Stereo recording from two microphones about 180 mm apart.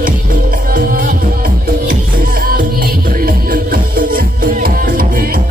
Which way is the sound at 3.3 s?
50° right (ahead or behind).